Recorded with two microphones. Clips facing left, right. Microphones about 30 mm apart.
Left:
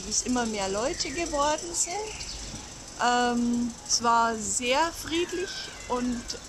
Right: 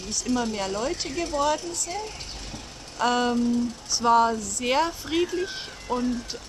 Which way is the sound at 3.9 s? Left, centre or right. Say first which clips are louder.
Right 3 dB; centre.